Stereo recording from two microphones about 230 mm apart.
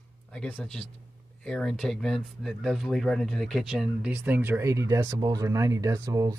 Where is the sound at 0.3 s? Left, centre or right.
Centre.